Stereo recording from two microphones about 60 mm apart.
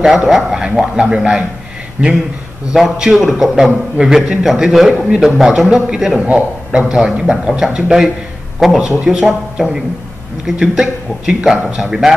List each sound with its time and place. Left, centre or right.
0.0 s a man's voice: centre; by 2.1 s right
2.7 s a man's voice: centre